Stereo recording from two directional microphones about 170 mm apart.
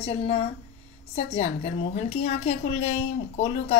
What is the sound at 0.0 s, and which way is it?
A woman's voice, 35° left (ahead or behind).